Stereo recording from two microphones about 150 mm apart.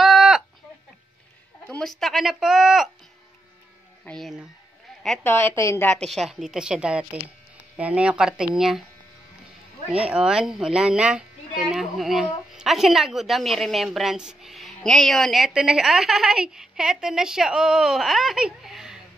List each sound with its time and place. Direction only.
0.0 s a sound: centre (ahead or behind)
1.7 s speech: 5° left (ahead or behind)
4.0 s speech: 5° left (ahead or behind)
5.2 s a woman's voice: 15° left (ahead or behind)
5.9 s speech: 5° left (ahead or behind)
10.0 s speech: 5° right (ahead or behind)